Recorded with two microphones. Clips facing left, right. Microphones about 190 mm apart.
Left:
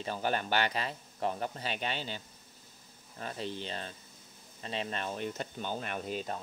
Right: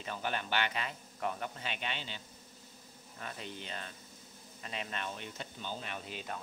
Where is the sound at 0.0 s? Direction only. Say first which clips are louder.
Left 5 dB; 35° left (ahead or behind).